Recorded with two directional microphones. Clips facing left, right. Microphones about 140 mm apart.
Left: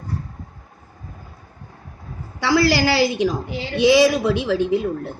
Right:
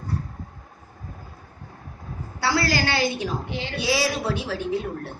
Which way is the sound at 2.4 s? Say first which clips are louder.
Left 6 dB; 90° left.